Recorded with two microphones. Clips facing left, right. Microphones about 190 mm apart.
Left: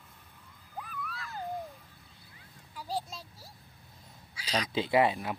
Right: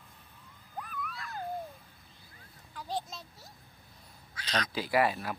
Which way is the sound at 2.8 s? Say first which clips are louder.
Left 1 dB; 10° left (ahead or behind).